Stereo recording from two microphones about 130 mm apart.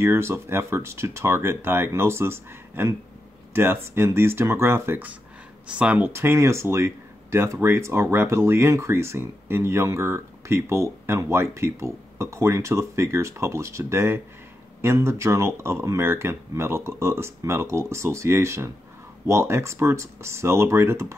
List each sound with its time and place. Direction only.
0.0 s speech: 20° right (ahead or behind)